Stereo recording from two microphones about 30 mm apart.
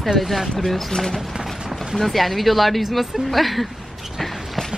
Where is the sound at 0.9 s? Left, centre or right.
Centre.